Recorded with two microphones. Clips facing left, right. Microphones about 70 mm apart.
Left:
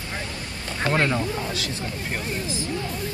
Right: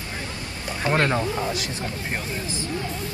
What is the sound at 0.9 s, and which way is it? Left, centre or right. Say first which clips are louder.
Speech: right 1 dB; right.